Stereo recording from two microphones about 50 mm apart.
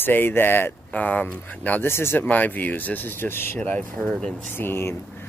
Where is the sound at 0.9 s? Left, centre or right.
Left.